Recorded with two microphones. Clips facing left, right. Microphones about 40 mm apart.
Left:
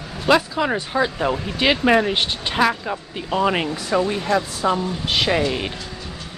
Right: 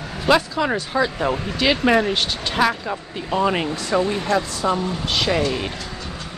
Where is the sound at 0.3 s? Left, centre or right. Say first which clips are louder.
Even; centre.